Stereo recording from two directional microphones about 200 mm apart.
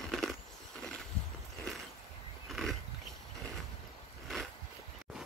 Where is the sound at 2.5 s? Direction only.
Centre (ahead or behind).